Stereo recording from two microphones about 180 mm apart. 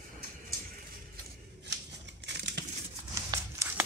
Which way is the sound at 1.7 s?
75° right (ahead or behind).